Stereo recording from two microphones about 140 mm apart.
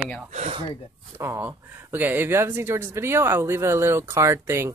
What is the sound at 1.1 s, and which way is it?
Speech, 20° right (ahead or behind).